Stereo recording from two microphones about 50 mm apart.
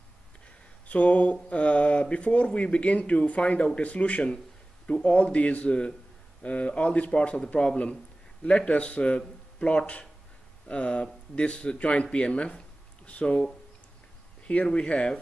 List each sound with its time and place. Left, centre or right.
0.8 s speech: left
14.5 s speech: left